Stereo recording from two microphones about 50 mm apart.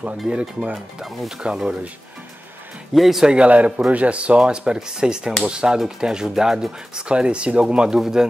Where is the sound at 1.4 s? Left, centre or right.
Centre.